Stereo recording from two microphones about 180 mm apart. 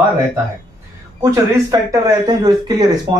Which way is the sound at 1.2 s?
20° right (ahead or behind).